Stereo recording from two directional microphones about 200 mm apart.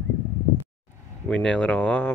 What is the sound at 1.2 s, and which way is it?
Speech, 5° left (ahead or behind).